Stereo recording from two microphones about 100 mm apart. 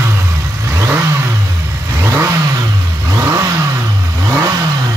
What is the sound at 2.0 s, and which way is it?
Vehicle, 25° right (ahead or behind).